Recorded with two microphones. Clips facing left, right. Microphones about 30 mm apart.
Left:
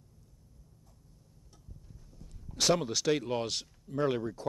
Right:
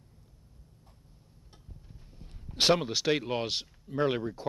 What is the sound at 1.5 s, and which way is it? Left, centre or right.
Speech, right.